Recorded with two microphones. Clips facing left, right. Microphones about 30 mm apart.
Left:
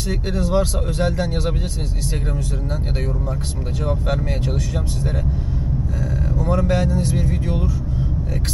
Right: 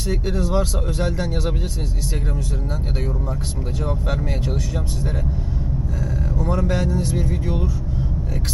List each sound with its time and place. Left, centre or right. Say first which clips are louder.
0.1 s speech: left 1 dB; centre
3.8 s speech: left 3 dB; centre
6.3 s speech: left 3 dB; centre